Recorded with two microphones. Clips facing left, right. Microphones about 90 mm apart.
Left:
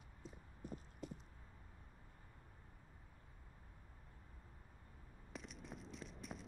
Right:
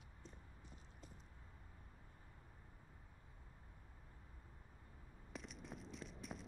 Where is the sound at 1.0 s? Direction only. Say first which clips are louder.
Left 11 dB; 75° left (ahead or behind).